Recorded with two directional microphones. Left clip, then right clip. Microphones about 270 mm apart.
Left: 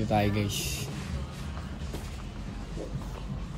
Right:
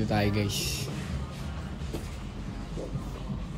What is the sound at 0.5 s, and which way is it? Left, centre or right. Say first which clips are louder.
Speech: right 2 dB; left.